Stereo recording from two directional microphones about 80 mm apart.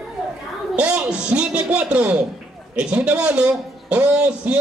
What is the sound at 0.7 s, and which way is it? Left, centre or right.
A man's voice, centre.